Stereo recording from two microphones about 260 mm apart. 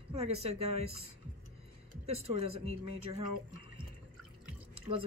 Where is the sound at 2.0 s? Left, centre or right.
Right.